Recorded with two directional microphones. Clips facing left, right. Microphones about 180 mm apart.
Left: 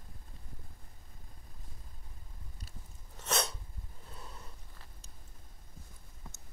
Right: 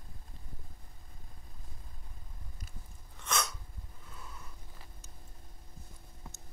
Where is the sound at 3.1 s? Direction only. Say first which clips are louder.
Left 1 dB; 35° left (ahead or behind).